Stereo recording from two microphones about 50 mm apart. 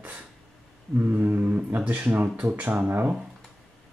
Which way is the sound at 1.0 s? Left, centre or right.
Right.